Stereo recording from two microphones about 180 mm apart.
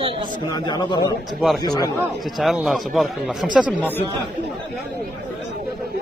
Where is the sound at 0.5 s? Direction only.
25° left (ahead or behind).